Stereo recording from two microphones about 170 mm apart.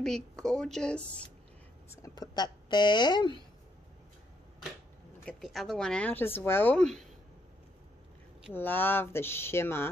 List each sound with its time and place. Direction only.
0.0 s a woman's voice: 5° left (ahead or behind)
1.9 s a woman's voice: 20° left (ahead or behind)
5.2 s speech: centre (ahead or behind)
8.5 s speech: 10° left (ahead or behind)